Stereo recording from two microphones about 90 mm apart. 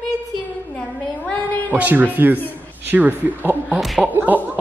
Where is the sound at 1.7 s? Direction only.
20° right (ahead or behind).